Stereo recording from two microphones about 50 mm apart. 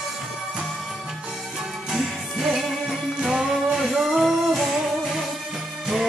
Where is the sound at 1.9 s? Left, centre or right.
Centre.